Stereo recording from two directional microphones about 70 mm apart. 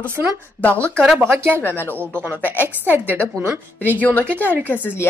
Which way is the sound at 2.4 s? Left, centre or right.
Left.